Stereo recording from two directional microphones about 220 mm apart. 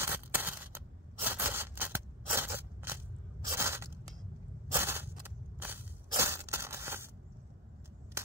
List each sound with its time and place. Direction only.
0.0 s scissors: 10° right (ahead or behind)
4.7 s crushing: 10° right (ahead or behind)